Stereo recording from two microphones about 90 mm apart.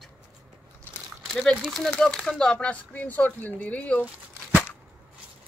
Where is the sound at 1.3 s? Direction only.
5° left (ahead or behind).